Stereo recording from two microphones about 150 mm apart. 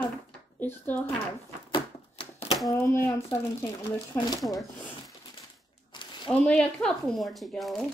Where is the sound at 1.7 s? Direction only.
35° left (ahead or behind).